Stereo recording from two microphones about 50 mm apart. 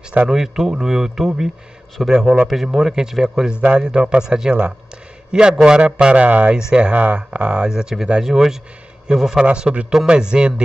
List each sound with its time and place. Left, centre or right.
0.3 s a man's voice: centre
9.5 s a man's voice: right